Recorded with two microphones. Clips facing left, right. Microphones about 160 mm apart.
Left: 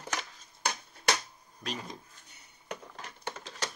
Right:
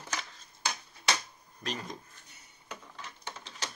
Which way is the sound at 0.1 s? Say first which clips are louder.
Left 2 dB; 50° left (ahead or behind).